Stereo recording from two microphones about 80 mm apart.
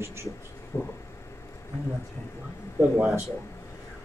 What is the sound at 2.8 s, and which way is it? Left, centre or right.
Speech, right.